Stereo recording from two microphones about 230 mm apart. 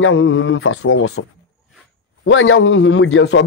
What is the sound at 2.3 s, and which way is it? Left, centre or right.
Speech, left.